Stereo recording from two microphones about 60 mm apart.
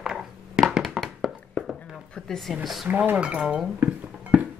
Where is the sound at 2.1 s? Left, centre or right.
Centre.